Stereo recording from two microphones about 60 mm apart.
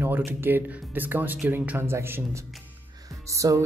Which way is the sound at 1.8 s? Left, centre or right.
Right.